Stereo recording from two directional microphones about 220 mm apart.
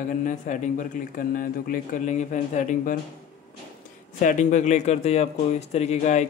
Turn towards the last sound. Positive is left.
turn(degrees=30)  # may be behind; listen again after turning